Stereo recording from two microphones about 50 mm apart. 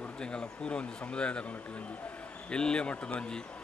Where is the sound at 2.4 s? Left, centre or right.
Centre.